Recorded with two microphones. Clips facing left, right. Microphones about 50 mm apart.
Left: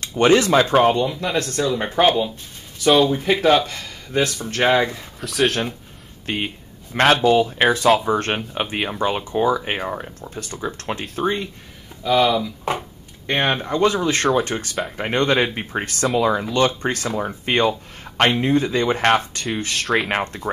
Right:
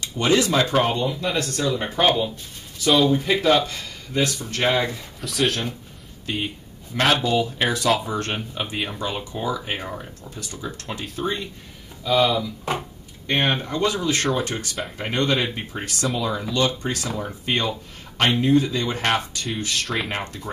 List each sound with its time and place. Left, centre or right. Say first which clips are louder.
0.0 s speech: left 5 dB; left
1.1 s speech: left 2 dB; centre
3.4 s speech: left 3 dB; centre
4.1 s speech: left 3 dB; left
5.2 s speech: left 3 dB; centre
6.2 s speech: left 2 dB; left
10.4 s speech: left 5 dB; left
12.0 s speech: left 2 dB; centre
13.3 s speech: left 2 dB; left
19.4 s speech: left 3 dB; centre
20.1 s speech: left 6 dB; left